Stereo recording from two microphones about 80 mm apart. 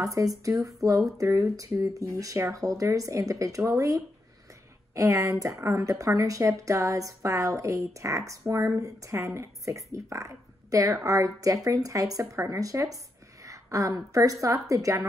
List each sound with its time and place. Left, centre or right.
0.0 s a woman's voice: right